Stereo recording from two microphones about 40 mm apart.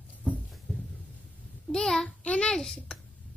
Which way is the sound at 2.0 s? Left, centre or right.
Left.